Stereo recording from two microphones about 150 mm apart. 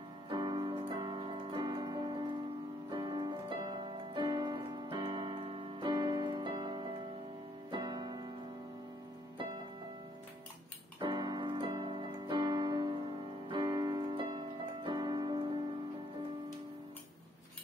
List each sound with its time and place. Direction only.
0.3 s music: 30° right (ahead or behind)
11.0 s keyboard: 30° right (ahead or behind)